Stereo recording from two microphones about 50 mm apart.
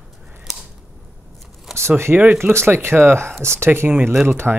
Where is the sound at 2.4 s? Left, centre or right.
Right.